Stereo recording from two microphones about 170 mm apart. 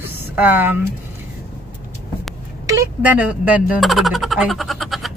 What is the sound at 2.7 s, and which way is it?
Speech, 15° right (ahead or behind).